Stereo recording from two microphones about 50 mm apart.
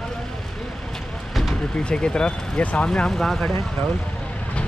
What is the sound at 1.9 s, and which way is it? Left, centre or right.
Speech, centre.